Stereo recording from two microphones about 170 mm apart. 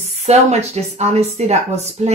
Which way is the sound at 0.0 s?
40° right (ahead or behind).